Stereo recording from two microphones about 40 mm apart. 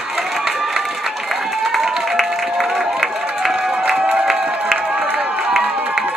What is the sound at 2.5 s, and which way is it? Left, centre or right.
Crowd, centre.